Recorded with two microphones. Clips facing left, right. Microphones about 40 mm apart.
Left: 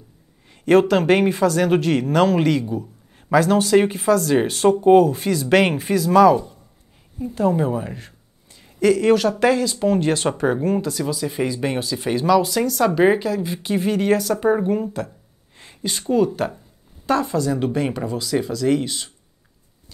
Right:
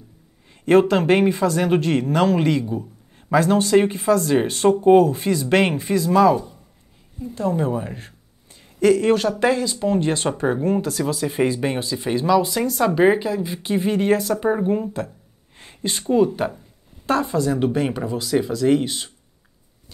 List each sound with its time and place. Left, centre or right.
0.7 s speech: centre
1.4 s speech: centre
1.7 s speech: centre
4.1 s speech: centre
7.2 s speech: left
7.5 s speech: centre
8.0 s a sound: centre
8.8 s speech: centre
10.8 s speech: right
11.6 s speech: centre
15.5 s a sound: right
16.0 s speech: centre
17.4 s speech: right